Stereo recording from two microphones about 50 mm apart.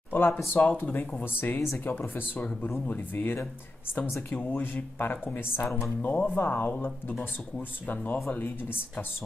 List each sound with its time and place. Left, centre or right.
0.1 s a sound: left
0.6 s speech: left
4.4 s speech: left